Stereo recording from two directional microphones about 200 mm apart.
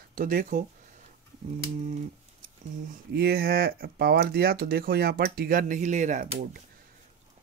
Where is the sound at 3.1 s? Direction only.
50° right (ahead or behind).